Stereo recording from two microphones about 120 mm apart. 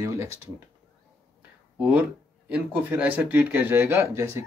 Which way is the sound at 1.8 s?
10° right (ahead or behind).